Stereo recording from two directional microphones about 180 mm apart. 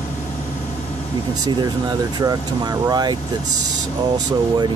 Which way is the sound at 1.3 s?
20° right (ahead or behind).